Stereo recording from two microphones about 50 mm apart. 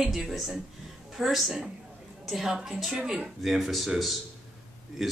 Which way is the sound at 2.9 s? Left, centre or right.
Centre.